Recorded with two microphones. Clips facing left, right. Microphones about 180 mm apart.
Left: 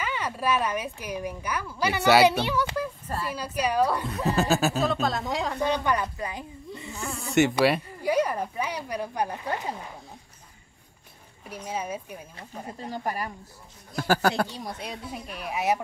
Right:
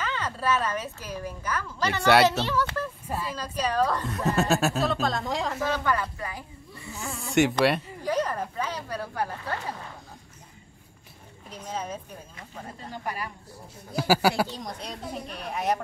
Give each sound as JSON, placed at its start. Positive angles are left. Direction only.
{"t": 0.0, "sound": "speech", "side_deg": 10}
{"t": 4.4, "sound": "speech", "side_deg": 0}
{"t": 5.9, "sound": "a woman's voice", "side_deg": 20}
{"t": 7.0, "sound": "speech", "side_deg": 0}
{"t": 11.4, "sound": "speech", "side_deg": 10}
{"t": 13.0, "sound": "speech", "side_deg": 40}
{"t": 13.9, "sound": "speech", "side_deg": -5}
{"t": 14.5, "sound": "speech", "side_deg": 5}